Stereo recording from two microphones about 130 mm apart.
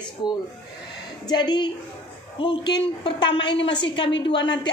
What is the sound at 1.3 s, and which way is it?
A woman's voice, 35° left (ahead or behind).